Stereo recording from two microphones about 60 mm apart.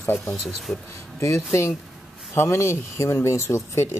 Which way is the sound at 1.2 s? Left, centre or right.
Left.